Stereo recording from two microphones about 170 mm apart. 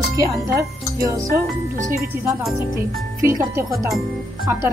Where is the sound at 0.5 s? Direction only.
15° right (ahead or behind).